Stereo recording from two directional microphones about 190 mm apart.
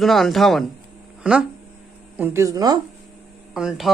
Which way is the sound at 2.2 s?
15° right (ahead or behind).